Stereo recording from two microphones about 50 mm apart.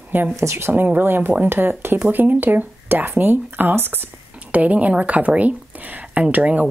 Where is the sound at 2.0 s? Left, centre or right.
Right.